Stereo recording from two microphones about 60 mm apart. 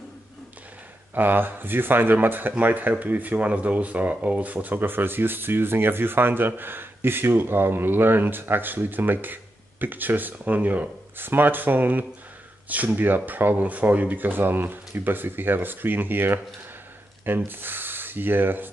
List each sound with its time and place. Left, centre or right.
1.1 s speech: right
17.5 s speech: right